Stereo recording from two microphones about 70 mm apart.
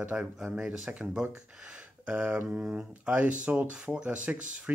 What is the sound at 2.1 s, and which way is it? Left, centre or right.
Speech, centre.